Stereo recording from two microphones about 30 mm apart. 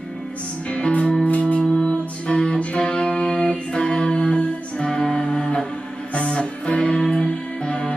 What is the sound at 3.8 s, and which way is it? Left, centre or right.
Music, left.